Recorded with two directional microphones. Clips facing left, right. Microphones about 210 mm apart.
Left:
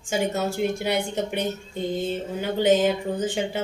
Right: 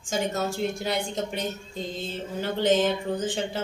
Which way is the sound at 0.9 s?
65° left (ahead or behind).